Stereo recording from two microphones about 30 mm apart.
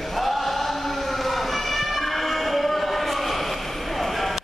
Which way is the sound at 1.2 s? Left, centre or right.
Centre.